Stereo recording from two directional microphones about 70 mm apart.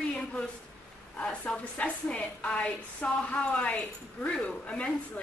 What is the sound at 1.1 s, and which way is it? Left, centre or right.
A woman's voice, left.